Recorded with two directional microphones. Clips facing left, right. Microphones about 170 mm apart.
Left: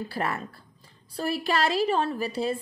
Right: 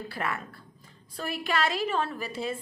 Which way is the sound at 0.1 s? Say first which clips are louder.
Left 3 dB; 35° left (ahead or behind).